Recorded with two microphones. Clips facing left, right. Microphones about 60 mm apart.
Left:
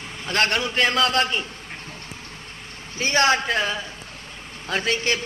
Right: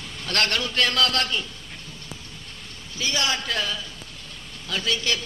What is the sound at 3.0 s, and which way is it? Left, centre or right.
Speech, left.